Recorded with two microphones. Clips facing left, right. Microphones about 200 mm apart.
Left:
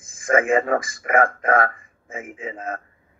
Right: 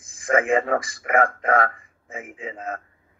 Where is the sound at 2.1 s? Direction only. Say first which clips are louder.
Left 2 dB; 15° left (ahead or behind).